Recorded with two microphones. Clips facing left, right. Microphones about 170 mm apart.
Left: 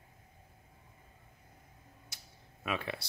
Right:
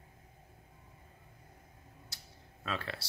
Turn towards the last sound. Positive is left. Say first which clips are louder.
# left 2 dB
turn(degrees=15)  # may be behind; listen again after turning